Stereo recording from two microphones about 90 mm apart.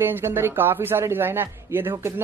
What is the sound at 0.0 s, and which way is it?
A man's voice, 25° right (ahead or behind).